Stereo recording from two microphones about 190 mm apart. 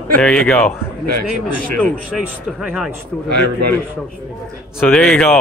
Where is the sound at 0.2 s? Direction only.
5° left (ahead or behind).